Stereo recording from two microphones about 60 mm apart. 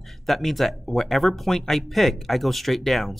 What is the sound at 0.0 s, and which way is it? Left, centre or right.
Speech, centre.